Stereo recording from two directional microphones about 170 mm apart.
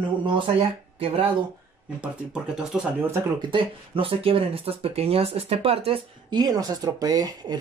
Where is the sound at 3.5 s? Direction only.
30° right (ahead or behind).